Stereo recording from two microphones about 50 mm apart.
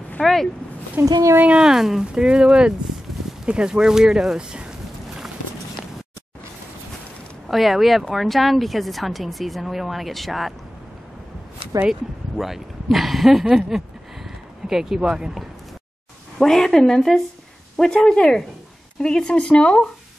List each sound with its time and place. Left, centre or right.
0.2 s a sound: centre
1.0 s speech: right
1.6 s speech: centre
7.4 s speech: centre
11.9 s speech: centre
16.3 s a woman's voice: centre